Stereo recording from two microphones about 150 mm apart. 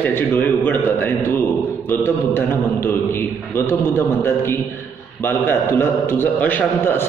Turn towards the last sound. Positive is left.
turn(degrees=15)  # may be behind; listen again after turning